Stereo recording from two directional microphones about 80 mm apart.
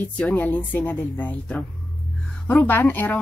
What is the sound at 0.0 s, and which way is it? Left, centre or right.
Speech, left.